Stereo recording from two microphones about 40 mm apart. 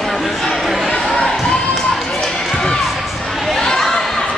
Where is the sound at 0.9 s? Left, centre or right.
Centre.